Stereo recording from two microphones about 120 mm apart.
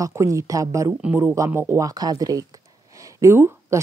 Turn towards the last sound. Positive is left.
turn(degrees=-25)  # may be behind; listen again after turning